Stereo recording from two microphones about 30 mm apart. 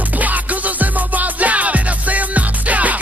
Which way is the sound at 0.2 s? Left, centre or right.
Right.